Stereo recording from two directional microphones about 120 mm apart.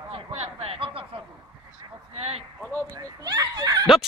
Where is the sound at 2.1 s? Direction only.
55° right (ahead or behind).